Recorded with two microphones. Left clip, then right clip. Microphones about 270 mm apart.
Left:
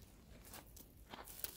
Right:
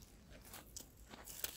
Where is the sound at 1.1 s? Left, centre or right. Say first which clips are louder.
Left 4 dB; left.